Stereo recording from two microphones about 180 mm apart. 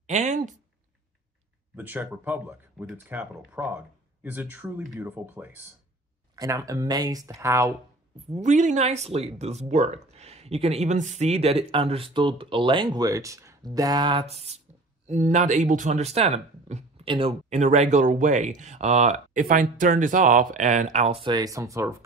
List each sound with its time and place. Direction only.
0.0 s speech: 40° right (ahead or behind)
1.8 s speech: 10° right (ahead or behind)
8.4 s speech: 45° right (ahead or behind)
21.3 s speech: 20° right (ahead or behind)